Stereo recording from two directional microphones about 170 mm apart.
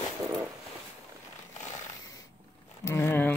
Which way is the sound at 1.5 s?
45° left (ahead or behind).